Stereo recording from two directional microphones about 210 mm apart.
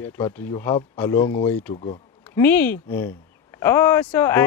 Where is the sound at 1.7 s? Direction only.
30° left (ahead or behind).